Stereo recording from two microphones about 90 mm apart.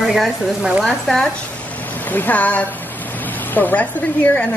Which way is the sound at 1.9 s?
20° left (ahead or behind).